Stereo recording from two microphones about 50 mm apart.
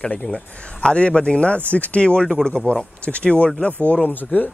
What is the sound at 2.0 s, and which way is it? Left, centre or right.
A man's voice, centre.